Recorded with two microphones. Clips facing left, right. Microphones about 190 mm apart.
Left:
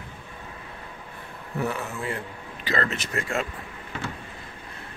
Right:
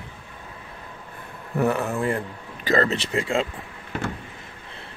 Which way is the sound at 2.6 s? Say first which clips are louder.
Right 6 dB; 40° right (ahead or behind).